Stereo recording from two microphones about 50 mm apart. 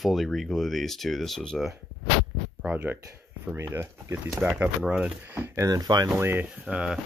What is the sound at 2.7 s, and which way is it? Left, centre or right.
Speech, right.